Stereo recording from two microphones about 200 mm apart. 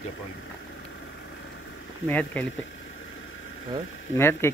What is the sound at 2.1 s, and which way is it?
Speech, 5° left (ahead or behind).